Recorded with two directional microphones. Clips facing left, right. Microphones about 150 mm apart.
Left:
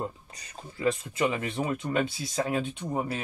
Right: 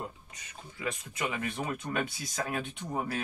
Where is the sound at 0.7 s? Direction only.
30° left (ahead or behind).